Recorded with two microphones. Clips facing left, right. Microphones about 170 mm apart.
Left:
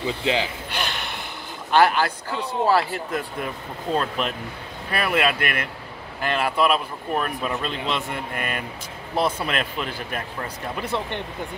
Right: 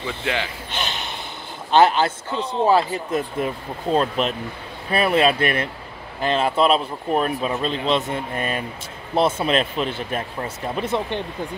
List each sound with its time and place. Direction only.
0.0 s speech: 20° left (ahead or behind)
0.7 s a sound: 20° right (ahead or behind)
1.7 s speech: 20° right (ahead or behind)